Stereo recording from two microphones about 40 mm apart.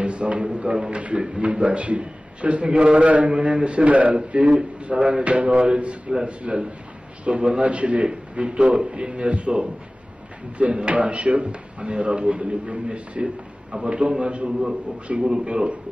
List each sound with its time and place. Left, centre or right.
0.0 s speech: right